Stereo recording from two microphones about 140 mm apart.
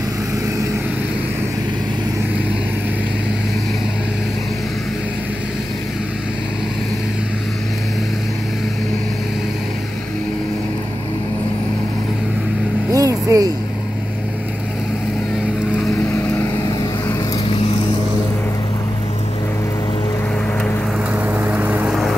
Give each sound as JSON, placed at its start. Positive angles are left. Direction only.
{"t": 12.9, "sound": "vehicle", "side_deg": -25}
{"t": 16.1, "sound": "vehicle", "side_deg": 15}
{"t": 17.5, "sound": "vehicle", "side_deg": 45}
{"t": 21.1, "sound": "vehicle", "side_deg": -10}